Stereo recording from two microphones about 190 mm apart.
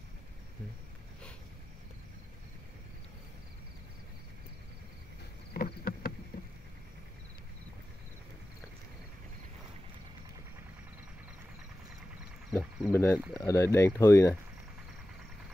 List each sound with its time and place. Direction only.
5.5 s rowboat: 50° left (ahead or behind)
12.4 s cricket: 5° right (ahead or behind)
12.9 s speech: 15° left (ahead or behind)